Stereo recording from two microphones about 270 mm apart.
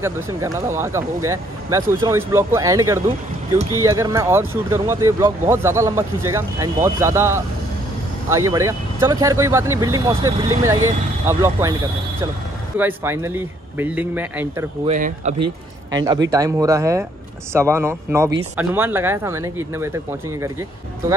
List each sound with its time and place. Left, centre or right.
0.0 s speech: centre
12.7 s speech: centre
14.9 s speech: right
15.9 s speech: centre